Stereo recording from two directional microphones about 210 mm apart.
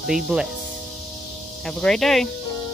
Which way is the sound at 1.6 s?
Centre (ahead or behind).